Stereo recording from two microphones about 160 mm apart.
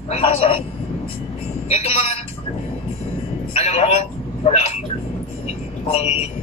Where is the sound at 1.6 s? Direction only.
40° left (ahead or behind).